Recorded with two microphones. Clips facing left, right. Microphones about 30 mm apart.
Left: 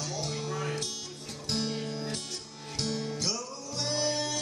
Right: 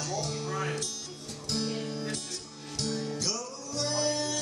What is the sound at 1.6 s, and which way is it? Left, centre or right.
Music, centre.